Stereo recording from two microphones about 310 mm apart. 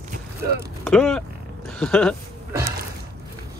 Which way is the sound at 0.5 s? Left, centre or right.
Centre.